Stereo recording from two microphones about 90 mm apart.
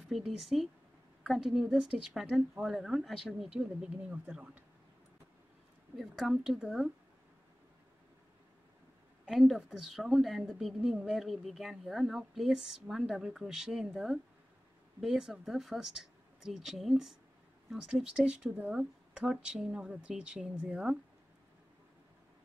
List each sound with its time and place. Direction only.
0.1 s a woman's voice: centre (ahead or behind)
5.9 s a woman's voice: 5° right (ahead or behind)
9.2 s a woman's voice: centre (ahead or behind)